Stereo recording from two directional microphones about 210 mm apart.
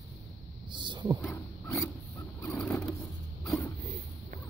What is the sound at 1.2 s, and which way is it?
Wild animals, 10° left (ahead or behind).